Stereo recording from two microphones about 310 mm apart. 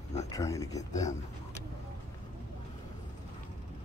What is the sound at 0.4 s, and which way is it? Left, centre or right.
Speech, centre.